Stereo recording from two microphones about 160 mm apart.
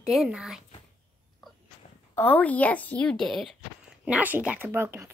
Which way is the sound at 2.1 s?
10° left (ahead or behind).